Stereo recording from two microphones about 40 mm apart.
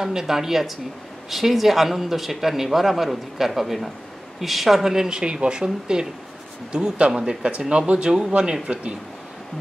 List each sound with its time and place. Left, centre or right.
0.0 s speech: centre
5.2 s speech: right